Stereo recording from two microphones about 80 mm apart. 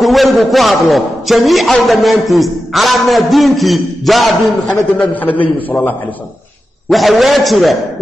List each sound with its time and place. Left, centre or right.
0.0 s a man's voice: centre
4.9 s a man's voice: centre
6.9 s a man's voice: centre